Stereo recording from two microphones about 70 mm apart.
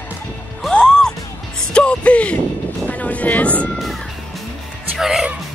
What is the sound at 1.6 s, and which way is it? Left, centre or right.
Speech, centre.